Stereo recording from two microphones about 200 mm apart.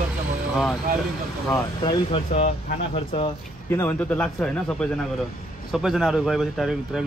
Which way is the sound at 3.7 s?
5° left (ahead or behind).